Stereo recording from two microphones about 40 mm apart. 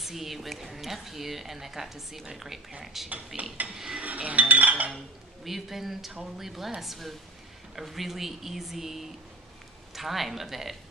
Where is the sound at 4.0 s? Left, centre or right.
Right.